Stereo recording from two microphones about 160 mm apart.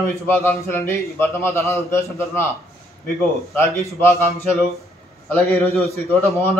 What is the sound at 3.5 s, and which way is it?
Speech, 15° left (ahead or behind).